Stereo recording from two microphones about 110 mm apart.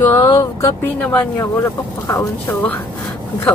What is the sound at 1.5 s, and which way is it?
Speech, 30° left (ahead or behind).